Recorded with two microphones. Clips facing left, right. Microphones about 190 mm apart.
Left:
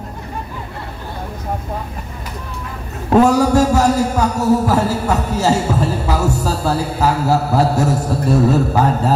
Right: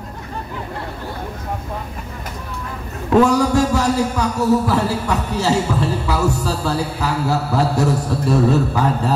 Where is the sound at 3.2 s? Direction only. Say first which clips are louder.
Left 2 dB; 40° left (ahead or behind).